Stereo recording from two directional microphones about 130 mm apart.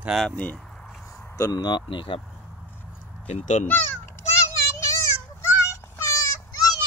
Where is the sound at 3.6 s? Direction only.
15° left (ahead or behind).